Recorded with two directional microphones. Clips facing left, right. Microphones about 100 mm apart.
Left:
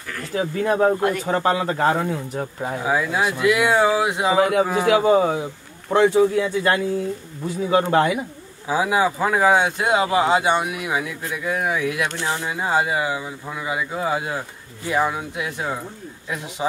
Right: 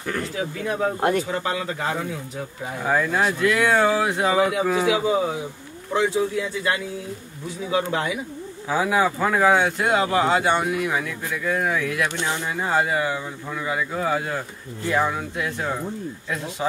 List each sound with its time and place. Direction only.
0.4 s speech: 40° left (ahead or behind)
2.8 s speech: 10° left (ahead or behind)
4.4 s a man's voice: 55° left (ahead or behind)
8.6 s speech: 15° left (ahead or behind)